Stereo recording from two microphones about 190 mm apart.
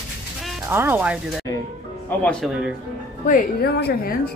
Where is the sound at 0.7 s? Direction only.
10° right (ahead or behind).